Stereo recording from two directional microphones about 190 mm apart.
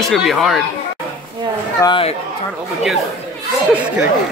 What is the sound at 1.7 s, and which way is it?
Speech, 25° left (ahead or behind).